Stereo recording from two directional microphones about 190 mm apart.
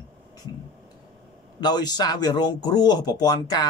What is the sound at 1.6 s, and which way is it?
Speech, 20° left (ahead or behind).